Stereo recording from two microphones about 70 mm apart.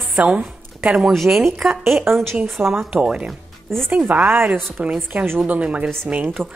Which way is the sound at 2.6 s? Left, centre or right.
Centre.